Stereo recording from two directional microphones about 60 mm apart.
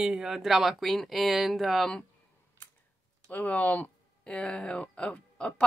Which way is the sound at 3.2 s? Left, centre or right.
Left.